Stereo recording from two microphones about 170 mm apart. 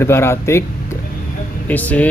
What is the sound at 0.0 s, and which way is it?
Speech, 15° left (ahead or behind).